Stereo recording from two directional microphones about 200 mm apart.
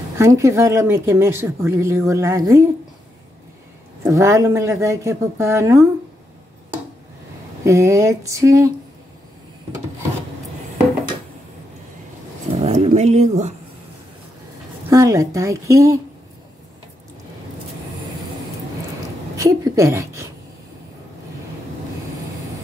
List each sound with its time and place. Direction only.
0.2 s speech: 15° right (ahead or behind)
4.0 s speech: 15° right (ahead or behind)
7.6 s speech: 15° right (ahead or behind)
12.5 s speech: 30° right (ahead or behind)
14.9 s speech: 15° right (ahead or behind)
19.3 s a woman's voice: 15° right (ahead or behind)